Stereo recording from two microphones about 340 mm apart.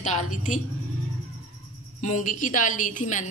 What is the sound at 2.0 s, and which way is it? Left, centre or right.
A woman's voice, left.